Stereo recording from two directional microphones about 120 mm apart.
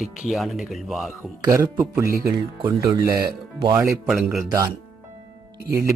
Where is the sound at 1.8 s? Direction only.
25° right (ahead or behind).